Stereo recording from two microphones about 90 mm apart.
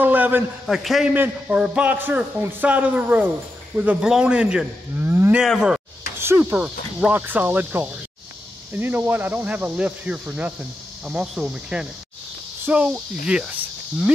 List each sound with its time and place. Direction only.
0.0 s a sound: 20° right (ahead or behind)
0.7 s a man's voice: 5° right (ahead or behind)
1.1 s speech: 15° right (ahead or behind)
5.0 s cattle: 25° right (ahead or behind)
6.1 s speech: 25° right (ahead or behind)
6.5 s speech: 10° right (ahead or behind)
7.1 s speech: 20° right (ahead or behind)
12.6 s cricket: 15° right (ahead or behind)